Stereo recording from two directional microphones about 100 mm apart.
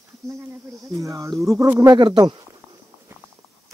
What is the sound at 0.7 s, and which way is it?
Speech, centre (ahead or behind).